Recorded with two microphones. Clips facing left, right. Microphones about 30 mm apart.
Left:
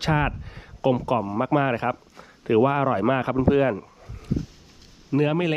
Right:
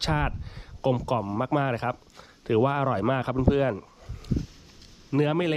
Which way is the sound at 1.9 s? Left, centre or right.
Left.